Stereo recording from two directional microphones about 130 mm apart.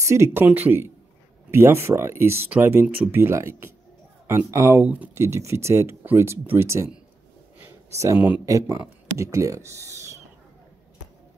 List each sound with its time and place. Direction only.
0.0 s speech: 25° right (ahead or behind)
8.0 s speech: 20° right (ahead or behind)